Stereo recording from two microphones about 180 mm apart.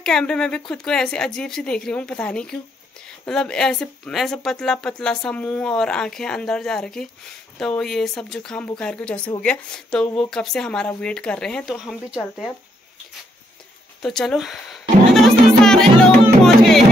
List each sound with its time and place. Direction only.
0.0 s speech: 5° left (ahead or behind)
14.0 s music: centre (ahead or behind)